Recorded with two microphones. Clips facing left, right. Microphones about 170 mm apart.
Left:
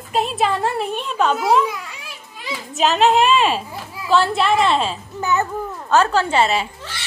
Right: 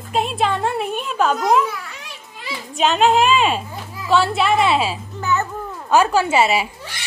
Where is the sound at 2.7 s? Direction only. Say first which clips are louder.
Even; centre (ahead or behind).